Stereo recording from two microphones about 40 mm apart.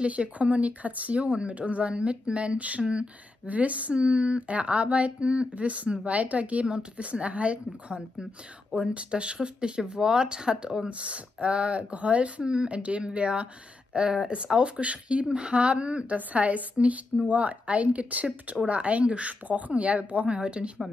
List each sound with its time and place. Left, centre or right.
0.0 s speech: right
3.4 s speech: right
16.2 s speech: right